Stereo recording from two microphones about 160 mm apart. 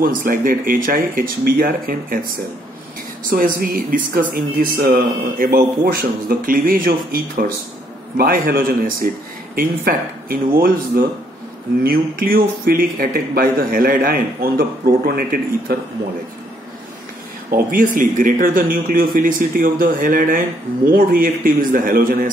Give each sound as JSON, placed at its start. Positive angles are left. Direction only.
{"t": 0.0, "sound": "speech", "side_deg": -60}
{"t": 3.3, "sound": "a man's voice", "side_deg": -60}
{"t": 17.6, "sound": "speech", "side_deg": -55}